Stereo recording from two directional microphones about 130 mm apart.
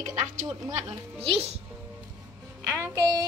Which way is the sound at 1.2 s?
50° right (ahead or behind).